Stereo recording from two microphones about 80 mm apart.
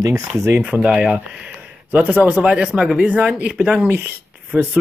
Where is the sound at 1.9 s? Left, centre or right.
Centre.